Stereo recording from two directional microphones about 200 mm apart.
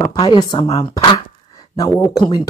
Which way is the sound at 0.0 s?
20° left (ahead or behind).